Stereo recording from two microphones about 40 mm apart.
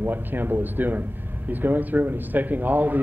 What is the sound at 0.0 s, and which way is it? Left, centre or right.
Speech, right.